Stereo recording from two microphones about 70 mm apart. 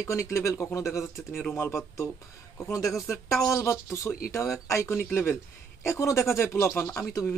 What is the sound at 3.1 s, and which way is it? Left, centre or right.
Speech, left.